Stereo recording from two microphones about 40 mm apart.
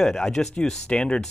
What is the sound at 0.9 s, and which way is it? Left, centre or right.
Speech, left.